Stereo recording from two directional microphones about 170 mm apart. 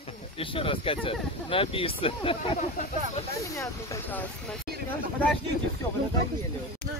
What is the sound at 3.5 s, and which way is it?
Speech, 20° left (ahead or behind).